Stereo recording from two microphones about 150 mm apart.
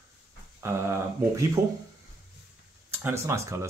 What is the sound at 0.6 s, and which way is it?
Speech, 20° right (ahead or behind).